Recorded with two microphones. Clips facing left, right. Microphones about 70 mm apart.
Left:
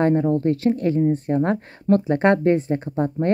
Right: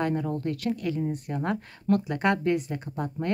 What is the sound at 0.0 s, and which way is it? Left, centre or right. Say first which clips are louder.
Speech: left 9 dB; left.